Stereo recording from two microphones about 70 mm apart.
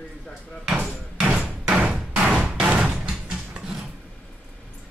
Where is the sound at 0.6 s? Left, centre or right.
Centre.